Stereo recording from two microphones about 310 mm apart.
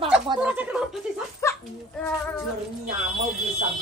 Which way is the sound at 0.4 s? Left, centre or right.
Centre.